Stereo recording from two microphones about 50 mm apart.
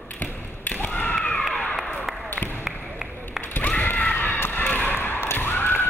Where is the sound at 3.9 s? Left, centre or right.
Left.